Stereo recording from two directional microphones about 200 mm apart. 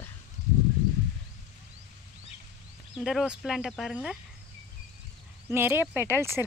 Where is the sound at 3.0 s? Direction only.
5° right (ahead or behind).